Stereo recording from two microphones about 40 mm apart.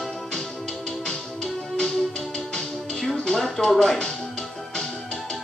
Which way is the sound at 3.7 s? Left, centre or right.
Centre.